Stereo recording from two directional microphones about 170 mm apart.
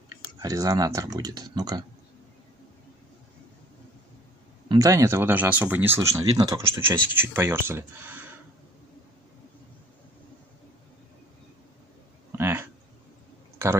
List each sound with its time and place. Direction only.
0.4 s speech: 20° right (ahead or behind)
4.6 s speech: 20° right (ahead or behind)
12.4 s a sound: 15° right (ahead or behind)